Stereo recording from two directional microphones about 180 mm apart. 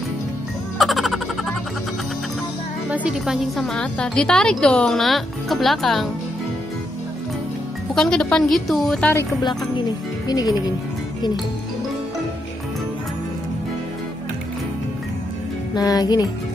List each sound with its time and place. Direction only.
0.7 s music: centre (ahead or behind)
2.9 s a woman's voice: 5° right (ahead or behind)
7.9 s a woman's voice: 5° left (ahead or behind)
9.1 s music: 25° left (ahead or behind)
10.2 s speech: 20° left (ahead or behind)
15.7 s music: 20° left (ahead or behind)